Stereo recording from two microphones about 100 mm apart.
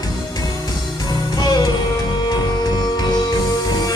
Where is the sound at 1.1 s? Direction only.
45° left (ahead or behind).